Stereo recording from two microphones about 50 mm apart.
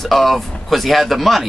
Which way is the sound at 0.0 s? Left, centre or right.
Centre.